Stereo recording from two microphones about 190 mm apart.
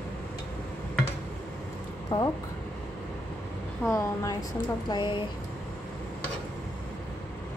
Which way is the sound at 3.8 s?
15° left (ahead or behind).